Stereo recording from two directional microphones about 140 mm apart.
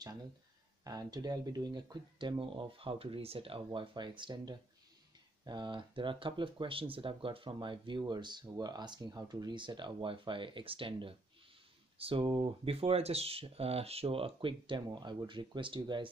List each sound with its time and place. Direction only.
0.8 s speech: 30° right (ahead or behind)